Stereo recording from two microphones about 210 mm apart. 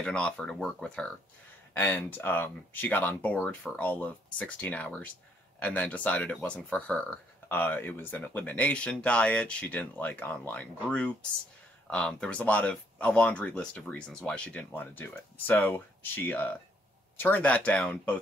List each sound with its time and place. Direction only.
0.0 s speech: 5° left (ahead or behind)